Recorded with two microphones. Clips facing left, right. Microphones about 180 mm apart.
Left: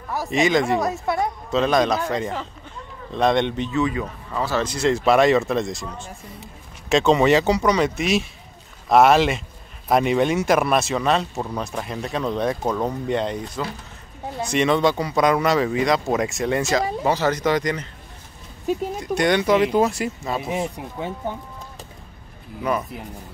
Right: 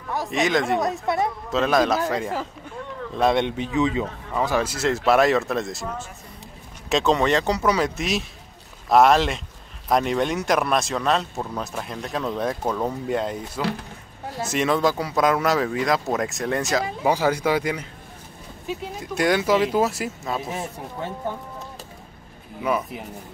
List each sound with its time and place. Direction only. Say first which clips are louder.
0.1 s speech: left 3 dB; centre (ahead or behind)
3.7 s speech: right 3 dB; 20° right (ahead or behind)
4.6 s speech: left 2 dB; 5° right (ahead or behind)
18.9 s speech: right 1 dB; 5° right (ahead or behind)
20.4 s speech: left 5 dB; 15° left (ahead or behind)
22.6 s speech: even; 5° right (ahead or behind)